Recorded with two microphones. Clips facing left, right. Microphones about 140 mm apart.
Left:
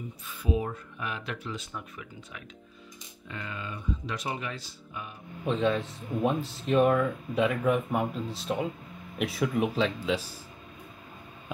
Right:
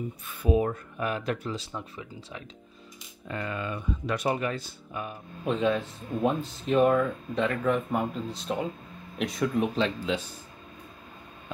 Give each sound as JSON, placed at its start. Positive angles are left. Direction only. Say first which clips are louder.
{"t": 0.3, "sound": "speech", "louder": "right 5 dB", "side_deg": -55}
{"t": 1.7, "sound": "speech", "louder": "right 3 dB", "side_deg": -25}
{"t": 3.3, "sound": "speech", "louder": "right 6 dB", "side_deg": -50}
{"t": 5.4, "sound": "speech", "louder": "right 1 dB", "side_deg": 0}